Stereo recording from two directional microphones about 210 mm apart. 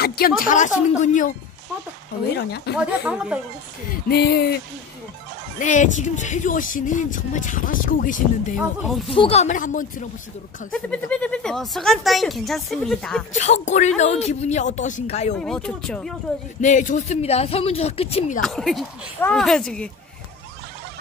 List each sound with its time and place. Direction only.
0.0 s a sound: 45° left (ahead or behind)
0.4 s speech: 40° left (ahead or behind)
2.3 s a sound: 50° left (ahead or behind)
2.8 s speech: 5° right (ahead or behind)
3.9 s a sound: 50° left (ahead or behind)
5.6 s speech: 35° left (ahead or behind)
8.5 s speech: centre (ahead or behind)
9.1 s speech: 25° left (ahead or behind)
10.7 s speech: 5° left (ahead or behind)
13.3 s speech: 35° left (ahead or behind)
15.3 s speech: 5° left (ahead or behind)
16.6 s speech: 35° left (ahead or behind)
18.4 s speech: centre (ahead or behind)